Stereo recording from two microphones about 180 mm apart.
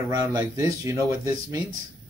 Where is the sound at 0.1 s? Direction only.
20° right (ahead or behind).